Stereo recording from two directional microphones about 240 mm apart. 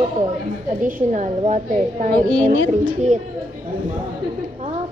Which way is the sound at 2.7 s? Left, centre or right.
Right.